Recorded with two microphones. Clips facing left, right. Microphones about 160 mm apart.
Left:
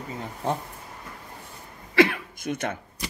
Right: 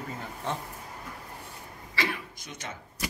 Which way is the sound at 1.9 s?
55° left (ahead or behind).